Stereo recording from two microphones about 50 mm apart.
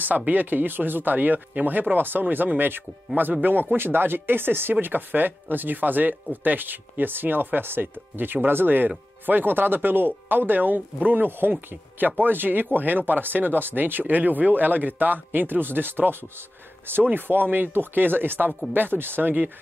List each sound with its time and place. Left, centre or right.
0.0 s speech: right